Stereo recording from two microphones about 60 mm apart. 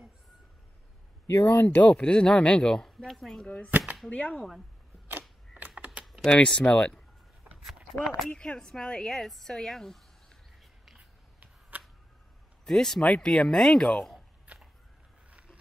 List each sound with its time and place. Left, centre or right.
1.2 s speech: left
1.9 s speech: centre
3.4 s speech: centre
3.7 s a sound: right
4.1 s speech: centre
6.2 s speech: centre
8.3 s speech: centre
9.2 s speech: centre
11.0 s a sound: right
12.6 s speech: centre
14.5 s a sound: right